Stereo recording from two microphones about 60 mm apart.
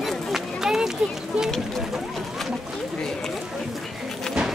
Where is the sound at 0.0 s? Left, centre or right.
Centre.